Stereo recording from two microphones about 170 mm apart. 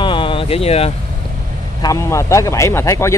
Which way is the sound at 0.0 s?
30° left (ahead or behind).